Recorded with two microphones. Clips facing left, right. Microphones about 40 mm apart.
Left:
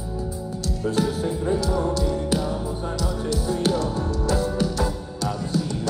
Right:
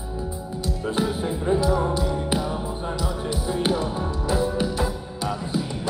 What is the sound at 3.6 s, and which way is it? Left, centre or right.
Music, centre.